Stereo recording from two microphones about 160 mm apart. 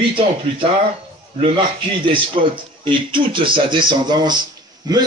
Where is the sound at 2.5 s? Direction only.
30° right (ahead or behind).